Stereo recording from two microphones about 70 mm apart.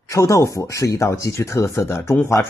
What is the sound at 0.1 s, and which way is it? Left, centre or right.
Speech, left.